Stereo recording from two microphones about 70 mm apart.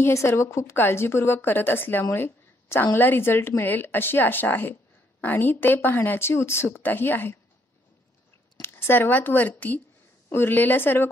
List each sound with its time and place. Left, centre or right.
0.0 s speech: left
2.0 s a sound: left
2.9 s speech: left
8.5 s a woman's voice: left